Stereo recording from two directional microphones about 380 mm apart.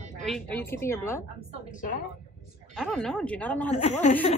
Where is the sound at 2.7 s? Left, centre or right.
Centre.